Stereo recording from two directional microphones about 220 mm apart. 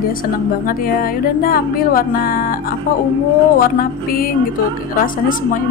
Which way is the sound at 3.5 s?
40° left (ahead or behind).